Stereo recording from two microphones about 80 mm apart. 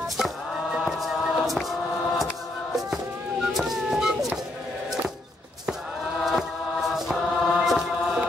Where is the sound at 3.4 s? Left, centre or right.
Centre.